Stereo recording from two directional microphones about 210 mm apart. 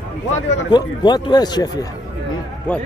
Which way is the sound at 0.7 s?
20° left (ahead or behind).